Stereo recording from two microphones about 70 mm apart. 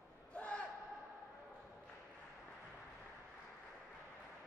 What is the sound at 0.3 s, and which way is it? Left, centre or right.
Gasp, centre.